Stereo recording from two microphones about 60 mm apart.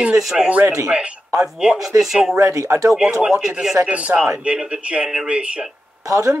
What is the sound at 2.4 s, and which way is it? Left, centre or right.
Speech, right.